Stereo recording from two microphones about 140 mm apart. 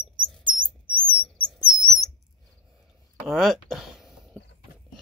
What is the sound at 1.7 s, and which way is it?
Bird, 5° right (ahead or behind).